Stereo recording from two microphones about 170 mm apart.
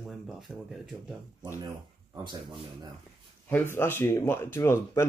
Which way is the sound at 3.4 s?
15° left (ahead or behind).